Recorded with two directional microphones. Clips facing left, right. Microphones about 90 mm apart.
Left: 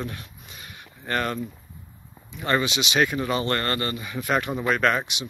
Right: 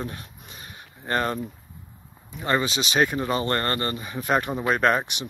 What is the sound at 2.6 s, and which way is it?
Speech, 40° right (ahead or behind).